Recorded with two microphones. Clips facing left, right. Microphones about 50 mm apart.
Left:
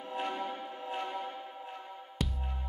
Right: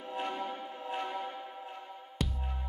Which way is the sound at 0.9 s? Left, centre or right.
Right.